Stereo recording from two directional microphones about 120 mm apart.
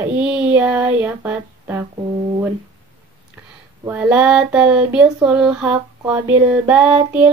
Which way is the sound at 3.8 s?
15° right (ahead or behind).